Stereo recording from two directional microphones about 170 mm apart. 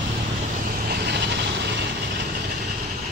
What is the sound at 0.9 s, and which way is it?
Vehicle, 75° right (ahead or behind).